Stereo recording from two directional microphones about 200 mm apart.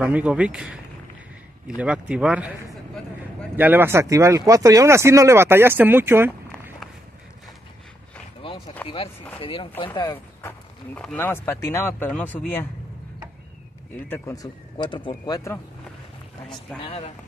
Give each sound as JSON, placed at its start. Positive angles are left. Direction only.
{"t": 0.0, "sound": "speech", "side_deg": -5}
{"t": 1.8, "sound": "a man's voice", "side_deg": -5}
{"t": 8.4, "sound": "a sound", "side_deg": 25}
{"t": 8.8, "sound": "speech", "side_deg": 30}
{"t": 11.0, "sound": "speech", "side_deg": 10}
{"t": 14.0, "sound": "speech", "side_deg": 15}
{"t": 16.8, "sound": "speech", "side_deg": 30}